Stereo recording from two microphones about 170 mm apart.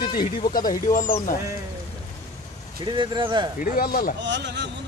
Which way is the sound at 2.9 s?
30° right (ahead or behind).